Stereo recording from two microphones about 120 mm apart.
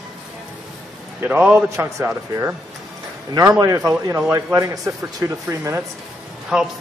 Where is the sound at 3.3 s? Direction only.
30° right (ahead or behind).